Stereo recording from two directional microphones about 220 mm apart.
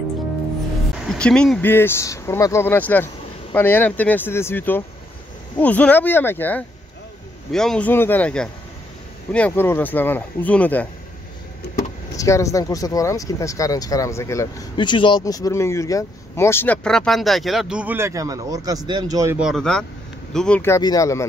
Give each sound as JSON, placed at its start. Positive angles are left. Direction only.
{"t": 1.0, "sound": "speech", "side_deg": 5}
{"t": 12.2, "sound": "speech", "side_deg": 15}
{"t": 19.3, "sound": "speech", "side_deg": 0}